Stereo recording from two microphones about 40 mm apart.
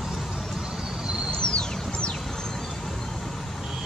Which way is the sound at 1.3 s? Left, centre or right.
Left.